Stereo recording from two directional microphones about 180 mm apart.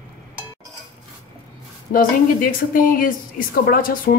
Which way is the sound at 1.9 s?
50° left (ahead or behind).